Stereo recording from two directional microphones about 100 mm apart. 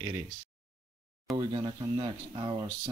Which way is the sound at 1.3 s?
50° right (ahead or behind).